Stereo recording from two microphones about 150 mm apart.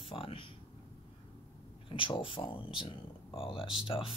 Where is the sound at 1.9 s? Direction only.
35° left (ahead or behind).